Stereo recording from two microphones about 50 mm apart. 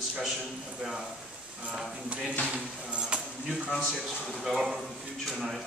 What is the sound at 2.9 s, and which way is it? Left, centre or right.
Cutlery, centre.